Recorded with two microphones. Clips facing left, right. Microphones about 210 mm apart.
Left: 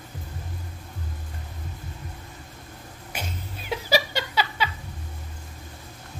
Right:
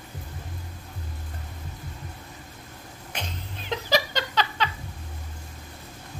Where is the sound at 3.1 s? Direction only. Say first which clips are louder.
Left 1 dB; 5° left (ahead or behind).